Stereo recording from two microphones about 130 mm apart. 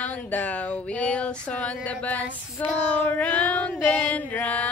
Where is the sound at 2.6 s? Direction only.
10° left (ahead or behind).